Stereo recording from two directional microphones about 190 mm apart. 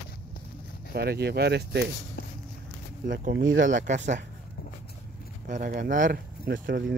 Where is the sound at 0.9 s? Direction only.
55° right (ahead or behind).